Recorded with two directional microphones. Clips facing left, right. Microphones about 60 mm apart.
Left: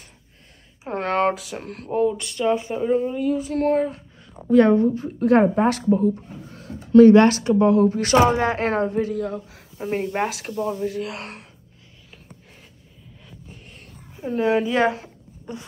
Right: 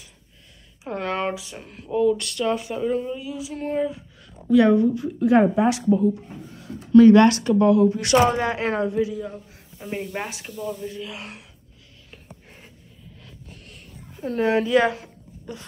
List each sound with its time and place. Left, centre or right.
0.8 s speech: left
2.0 s speech: left
3.0 s speech: left
3.5 s speech: left
4.5 s speech: left
6.5 s a sound: left
7.4 s speech: left
7.7 s speech: left
9.2 s speech: left
9.8 s speech: left
10.9 s speech: left
14.2 s a woman's voice: centre
14.7 s a sound: left